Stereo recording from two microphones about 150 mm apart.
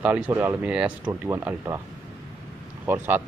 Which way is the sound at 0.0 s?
10° right (ahead or behind).